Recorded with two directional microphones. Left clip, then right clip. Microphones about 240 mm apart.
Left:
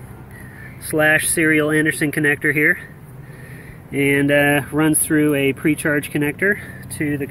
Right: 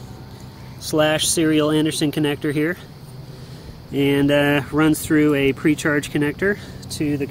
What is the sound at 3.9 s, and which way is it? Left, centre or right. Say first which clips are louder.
Speech: left 1 dB; centre.